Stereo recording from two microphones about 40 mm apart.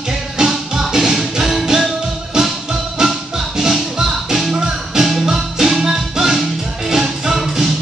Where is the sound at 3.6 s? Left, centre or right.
Centre.